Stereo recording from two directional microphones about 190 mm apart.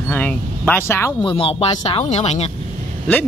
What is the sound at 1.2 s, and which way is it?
Speech, 30° left (ahead or behind).